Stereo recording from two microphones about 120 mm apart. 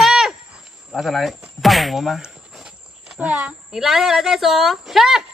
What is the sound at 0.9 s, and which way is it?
A woman's voice, centre (ahead or behind).